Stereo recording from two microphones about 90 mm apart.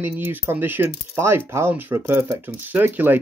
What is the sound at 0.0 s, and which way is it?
Speech, 20° right (ahead or behind).